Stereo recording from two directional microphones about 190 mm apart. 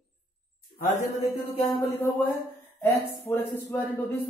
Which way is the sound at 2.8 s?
10° left (ahead or behind).